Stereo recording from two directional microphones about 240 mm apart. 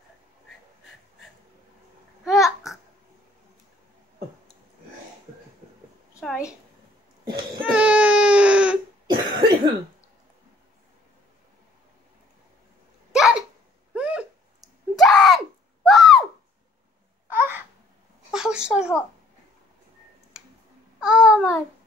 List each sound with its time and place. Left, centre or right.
2.2 s babbling: centre
7.7 s baby cry: centre
9.0 s cough: centre
13.1 s hiccup: centre
13.9 s a sound: centre
17.4 s babbling: centre
18.3 s a sound: centre
21.0 s babbling: centre